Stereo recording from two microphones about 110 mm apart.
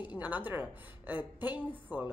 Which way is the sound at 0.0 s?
15° right (ahead or behind).